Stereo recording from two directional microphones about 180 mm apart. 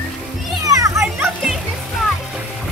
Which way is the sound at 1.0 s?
5° right (ahead or behind).